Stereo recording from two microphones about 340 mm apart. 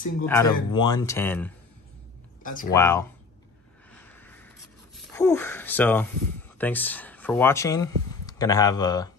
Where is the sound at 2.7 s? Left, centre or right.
Centre.